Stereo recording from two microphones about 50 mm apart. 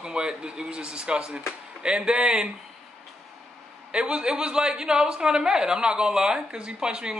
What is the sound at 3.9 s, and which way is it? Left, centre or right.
A man's voice, centre.